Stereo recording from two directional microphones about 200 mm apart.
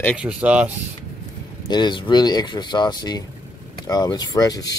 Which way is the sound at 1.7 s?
20° left (ahead or behind).